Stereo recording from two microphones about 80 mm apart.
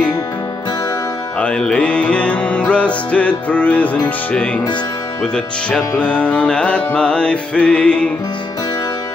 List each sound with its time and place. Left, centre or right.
1.4 s music: centre